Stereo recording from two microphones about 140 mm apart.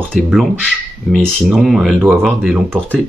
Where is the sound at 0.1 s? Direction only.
Centre (ahead or behind).